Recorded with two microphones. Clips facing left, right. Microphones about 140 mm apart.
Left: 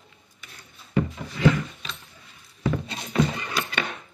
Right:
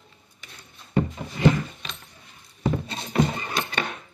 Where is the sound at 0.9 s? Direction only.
25° right (ahead or behind).